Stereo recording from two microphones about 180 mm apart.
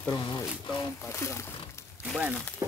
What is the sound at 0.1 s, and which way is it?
Speech, 20° left (ahead or behind).